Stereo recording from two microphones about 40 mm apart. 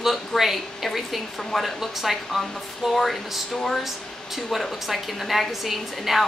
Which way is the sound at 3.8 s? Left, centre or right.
Centre.